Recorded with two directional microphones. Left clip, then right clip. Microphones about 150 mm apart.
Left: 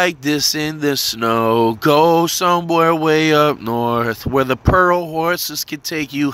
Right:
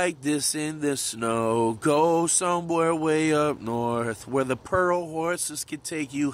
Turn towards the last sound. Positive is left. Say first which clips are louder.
# left 8 dB
turn(degrees=40)  # may be behind; listen again after turning